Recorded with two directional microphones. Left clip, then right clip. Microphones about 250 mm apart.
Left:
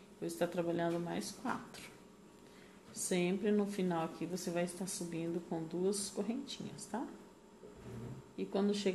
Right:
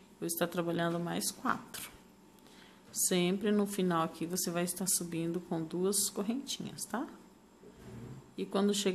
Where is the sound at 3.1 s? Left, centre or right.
Right.